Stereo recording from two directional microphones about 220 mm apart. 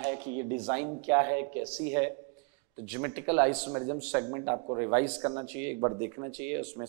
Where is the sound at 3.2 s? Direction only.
25° right (ahead or behind).